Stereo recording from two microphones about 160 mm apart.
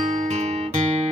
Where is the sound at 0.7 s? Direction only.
45° right (ahead or behind).